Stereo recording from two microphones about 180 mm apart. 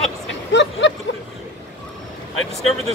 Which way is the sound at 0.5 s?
75° left (ahead or behind).